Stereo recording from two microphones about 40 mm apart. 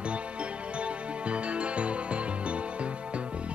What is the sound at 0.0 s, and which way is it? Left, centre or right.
Music, right.